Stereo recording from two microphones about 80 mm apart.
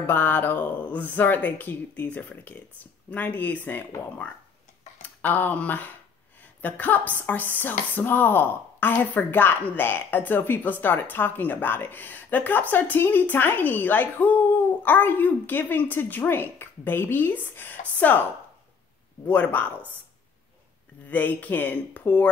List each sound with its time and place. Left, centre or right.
0.0 s speech: left
5.0 s speech: left
19.2 s speech: left
21.1 s speech: left